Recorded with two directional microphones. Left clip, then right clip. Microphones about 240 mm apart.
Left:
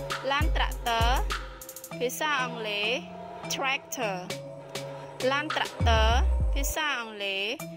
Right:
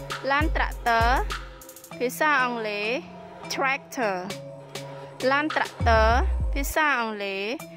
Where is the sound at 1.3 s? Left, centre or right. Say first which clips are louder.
Even; centre.